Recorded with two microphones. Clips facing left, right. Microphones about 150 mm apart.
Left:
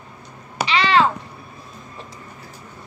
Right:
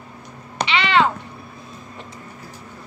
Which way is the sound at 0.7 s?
35° left (ahead or behind).